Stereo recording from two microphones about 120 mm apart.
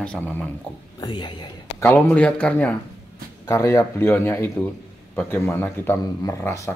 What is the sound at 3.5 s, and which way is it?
A man's voice, 20° left (ahead or behind).